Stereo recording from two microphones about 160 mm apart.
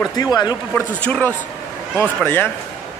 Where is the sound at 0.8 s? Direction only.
10° left (ahead or behind).